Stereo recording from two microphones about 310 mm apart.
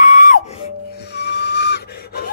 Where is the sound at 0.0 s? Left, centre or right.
Left.